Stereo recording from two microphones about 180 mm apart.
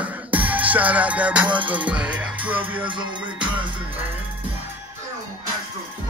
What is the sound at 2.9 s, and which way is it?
Music, 25° right (ahead or behind).